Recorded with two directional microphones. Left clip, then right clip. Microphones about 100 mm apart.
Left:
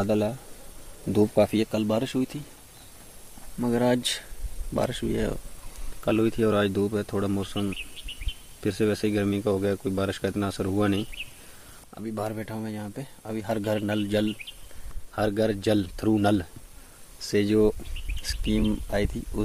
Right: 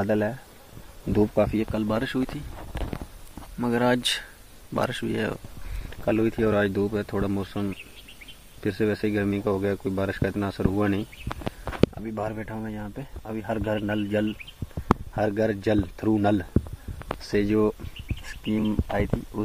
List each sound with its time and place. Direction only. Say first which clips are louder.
0.0 s speech: right 1 dB; 30° left (ahead or behind)
1.7 s speech: left 1 dB; 10° left (ahead or behind)
3.6 s speech: right 1 dB; 10° left (ahead or behind)
6.5 s speech: right 1 dB; 5° left (ahead or behind)
10.8 s speech: left 1 dB; 25° left (ahead or behind)
12.0 s speech: right 1 dB; 10° left (ahead or behind)
12.3 s speech: even; 25° left (ahead or behind)
15.1 s speech: left 5 dB; 5° left (ahead or behind)
18.2 s speech: left 1 dB; 35° left (ahead or behind)